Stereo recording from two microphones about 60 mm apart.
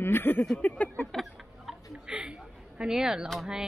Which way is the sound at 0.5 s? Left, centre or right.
Left.